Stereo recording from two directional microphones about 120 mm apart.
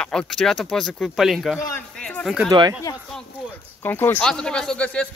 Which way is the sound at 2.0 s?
5° left (ahead or behind).